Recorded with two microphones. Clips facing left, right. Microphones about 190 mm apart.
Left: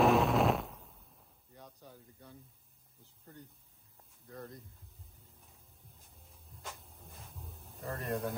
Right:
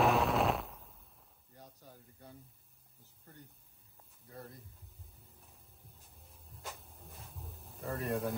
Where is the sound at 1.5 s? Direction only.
35° right (ahead or behind).